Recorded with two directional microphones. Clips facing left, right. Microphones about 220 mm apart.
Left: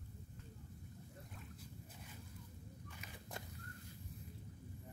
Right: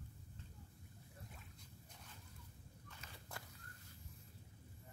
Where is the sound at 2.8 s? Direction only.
15° left (ahead or behind).